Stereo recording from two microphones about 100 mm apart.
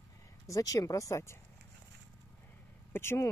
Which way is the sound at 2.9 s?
25° left (ahead or behind).